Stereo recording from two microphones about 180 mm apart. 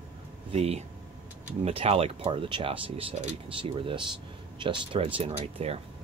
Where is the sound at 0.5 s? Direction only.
35° right (ahead or behind).